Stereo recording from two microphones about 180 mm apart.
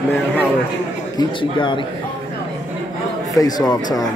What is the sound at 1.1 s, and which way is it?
Speech, 25° left (ahead or behind).